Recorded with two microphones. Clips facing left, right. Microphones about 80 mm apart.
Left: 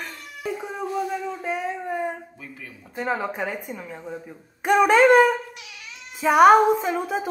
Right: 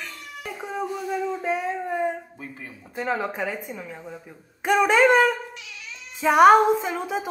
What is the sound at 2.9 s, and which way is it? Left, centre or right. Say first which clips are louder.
Speech: even; centre.